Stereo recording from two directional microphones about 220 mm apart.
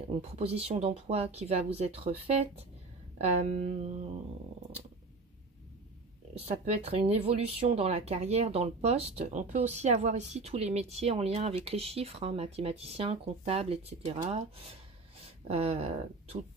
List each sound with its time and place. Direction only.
0.1 s speech: 25° right (ahead or behind)
6.3 s speech: 30° right (ahead or behind)